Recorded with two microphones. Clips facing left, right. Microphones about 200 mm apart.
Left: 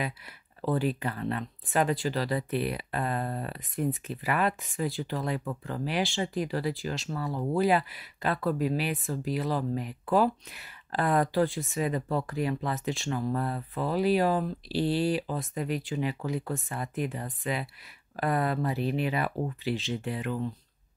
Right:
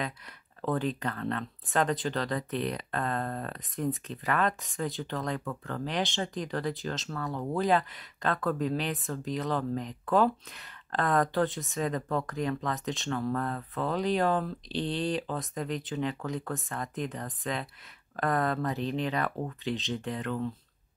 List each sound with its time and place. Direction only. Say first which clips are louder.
0.7 s speech: left 2 dB; 5° left (ahead or behind)
5.4 s speech: left 1 dB; 15° left (ahead or behind)
5.9 s speech: left 2 dB; 5° left (ahead or behind)
11.3 s speech: left 2 dB; centre (ahead or behind)